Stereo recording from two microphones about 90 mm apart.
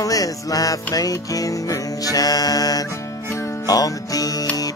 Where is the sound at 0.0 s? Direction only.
40° left (ahead or behind).